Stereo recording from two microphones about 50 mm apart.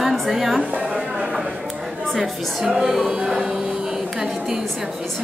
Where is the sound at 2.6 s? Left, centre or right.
Centre.